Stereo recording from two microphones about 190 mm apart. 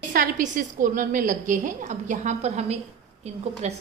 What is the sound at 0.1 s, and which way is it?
A woman's voice, 45° right (ahead or behind).